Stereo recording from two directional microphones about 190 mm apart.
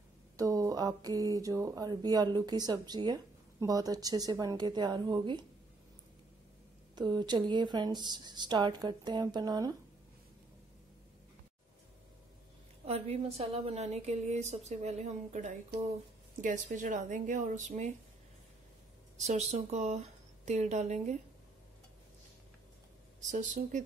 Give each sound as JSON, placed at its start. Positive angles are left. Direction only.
{"t": 0.4, "sound": "speech", "side_deg": -15}
{"t": 7.0, "sound": "speech", "side_deg": -20}
{"t": 12.8, "sound": "a woman's voice", "side_deg": -35}
{"t": 19.1, "sound": "speech", "side_deg": -35}
{"t": 23.2, "sound": "a woman's voice", "side_deg": -40}